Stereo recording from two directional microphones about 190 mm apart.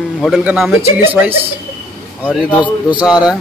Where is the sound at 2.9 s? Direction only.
5° right (ahead or behind).